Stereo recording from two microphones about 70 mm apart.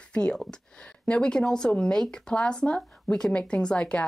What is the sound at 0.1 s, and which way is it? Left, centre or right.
Speech, centre.